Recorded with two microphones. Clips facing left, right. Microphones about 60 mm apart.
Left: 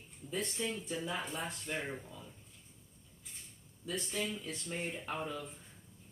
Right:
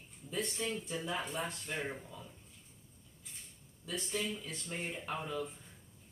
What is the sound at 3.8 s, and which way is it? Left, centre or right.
Speech, centre.